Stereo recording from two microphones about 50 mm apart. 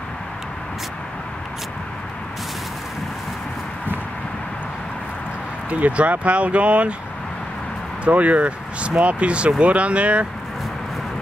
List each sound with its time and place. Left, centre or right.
5.7 s speech: right
8.0 s speech: right